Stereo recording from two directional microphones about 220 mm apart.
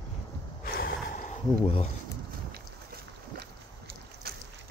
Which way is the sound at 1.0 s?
35° left (ahead or behind).